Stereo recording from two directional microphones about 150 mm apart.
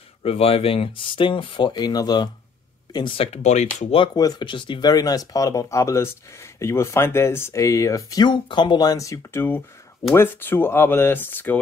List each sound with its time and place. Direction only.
0.2 s speech: 40° left (ahead or behind); by 11.6 s 10° left (ahead or behind)